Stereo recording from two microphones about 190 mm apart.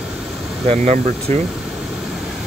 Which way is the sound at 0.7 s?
35° right (ahead or behind).